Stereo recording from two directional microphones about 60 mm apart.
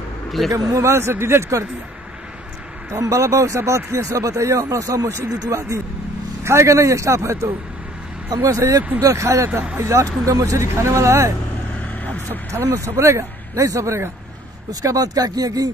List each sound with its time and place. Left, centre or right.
0.5 s speech: right
2.9 s speech: right
6.4 s speech: right
8.3 s speech: right
10.2 s speech: right
11.8 s vehicle: left
12.4 s speech: right
14.7 s speech: right